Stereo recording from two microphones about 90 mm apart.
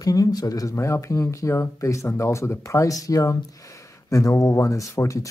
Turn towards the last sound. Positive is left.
turn(degrees=35)  # may be behind; listen again after turning